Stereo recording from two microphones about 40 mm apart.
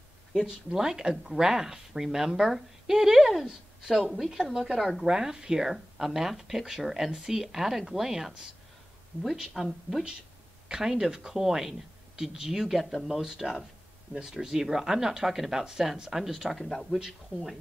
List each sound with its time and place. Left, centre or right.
0.5 s speech: centre
5.0 s speech: centre
10.7 s speech: centre
17.0 s speech: centre